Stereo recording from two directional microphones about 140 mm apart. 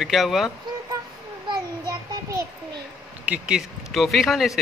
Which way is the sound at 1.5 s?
25° right (ahead or behind).